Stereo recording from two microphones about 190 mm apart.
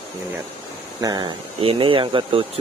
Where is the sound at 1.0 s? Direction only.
20° right (ahead or behind).